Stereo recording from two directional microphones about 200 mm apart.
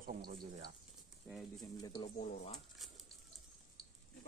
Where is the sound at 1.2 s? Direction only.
Centre (ahead or behind).